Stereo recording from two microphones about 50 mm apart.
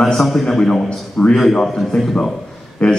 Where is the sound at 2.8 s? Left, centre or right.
Centre.